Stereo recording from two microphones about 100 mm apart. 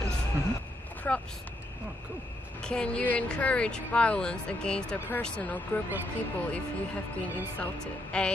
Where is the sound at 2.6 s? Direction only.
10° left (ahead or behind).